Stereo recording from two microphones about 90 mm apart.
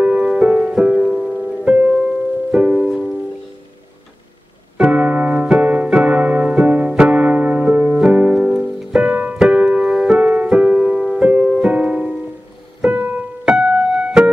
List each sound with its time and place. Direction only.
0.0 s music: 15° right (ahead or behind)
4.7 s music: 10° right (ahead or behind)
5.9 s piano: 15° right (ahead or behind)
8.0 s music: 15° right (ahead or behind)